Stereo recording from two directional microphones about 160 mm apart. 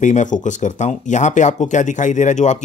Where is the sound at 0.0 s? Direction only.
50° left (ahead or behind).